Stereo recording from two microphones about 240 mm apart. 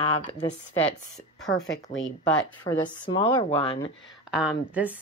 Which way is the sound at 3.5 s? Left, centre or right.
Left.